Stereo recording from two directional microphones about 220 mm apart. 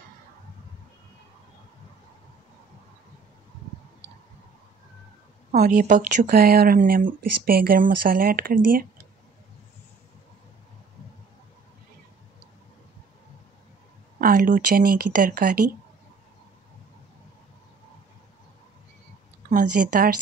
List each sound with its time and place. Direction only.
5.6 s speech: 35° right (ahead or behind)
14.2 s speech: 35° right (ahead or behind)
19.5 s speech: 40° right (ahead or behind)